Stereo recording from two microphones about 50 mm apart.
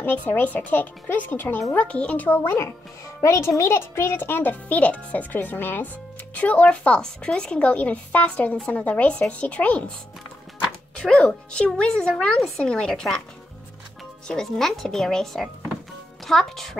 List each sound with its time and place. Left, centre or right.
0.0 s speech: left
1.8 s a woman's voice: left
2.2 s a child's voice: left
3.2 s a child's voice: left
5.3 s speech: left
6.3 s a woman's voice: left
11.0 s a woman's voice: centre
14.2 s a woman's voice: centre